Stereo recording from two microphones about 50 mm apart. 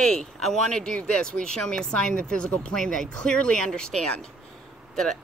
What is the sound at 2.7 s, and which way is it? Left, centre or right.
Speech, centre.